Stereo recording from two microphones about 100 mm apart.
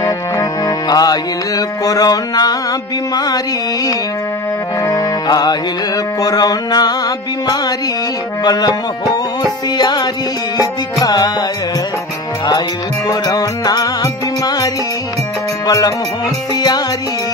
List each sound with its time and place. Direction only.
0.0 s music: 30° left (ahead or behind)
0.8 s music: 40° left (ahead or behind)
4.8 s music: 40° left (ahead or behind)
8.5 s music: 45° left (ahead or behind)
11.1 s music: 40° left (ahead or behind)
13.1 s music: 40° left (ahead or behind)
15.6 s music: 40° left (ahead or behind)